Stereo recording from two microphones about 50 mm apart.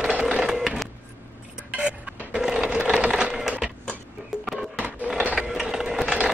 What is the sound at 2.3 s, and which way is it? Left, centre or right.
Wood, centre.